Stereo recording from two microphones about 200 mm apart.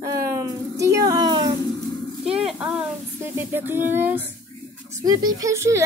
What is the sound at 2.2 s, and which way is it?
A woman's voice, 5° right (ahead or behind).